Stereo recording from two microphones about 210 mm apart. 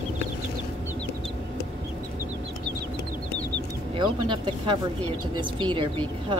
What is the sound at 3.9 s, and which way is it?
Speech, 20° right (ahead or behind).